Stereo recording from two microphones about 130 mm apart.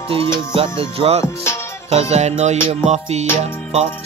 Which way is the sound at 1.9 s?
55° right (ahead or behind).